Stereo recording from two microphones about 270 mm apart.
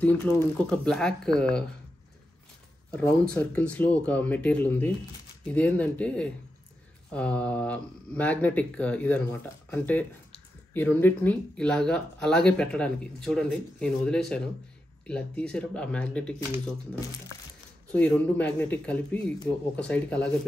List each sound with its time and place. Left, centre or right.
0.0 s speech: centre
2.9 s speech: centre
17.9 s speech: centre